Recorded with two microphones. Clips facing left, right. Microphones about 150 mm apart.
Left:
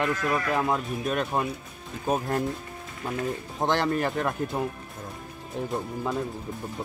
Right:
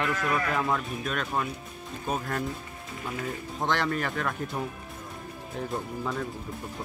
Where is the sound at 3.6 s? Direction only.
30° left (ahead or behind).